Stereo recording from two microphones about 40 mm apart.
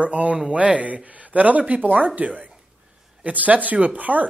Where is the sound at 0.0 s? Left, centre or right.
Right.